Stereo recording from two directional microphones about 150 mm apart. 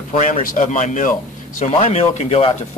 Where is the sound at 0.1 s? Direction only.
55° left (ahead or behind).